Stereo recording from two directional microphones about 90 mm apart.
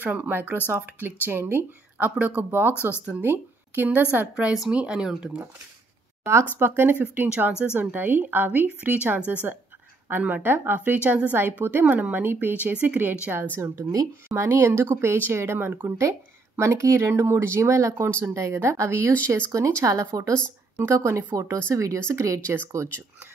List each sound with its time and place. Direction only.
0.0 s a woman's voice: 20° right (ahead or behind)
6.6 s a woman's voice: 25° right (ahead or behind)
13.6 s a woman's voice: 30° right (ahead or behind)